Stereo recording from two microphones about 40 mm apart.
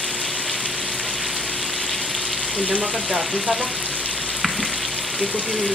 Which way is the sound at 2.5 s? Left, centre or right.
Left.